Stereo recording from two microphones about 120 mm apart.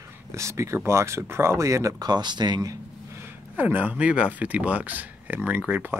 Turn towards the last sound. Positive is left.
turn(degrees=-15)  # may be behind; listen again after turning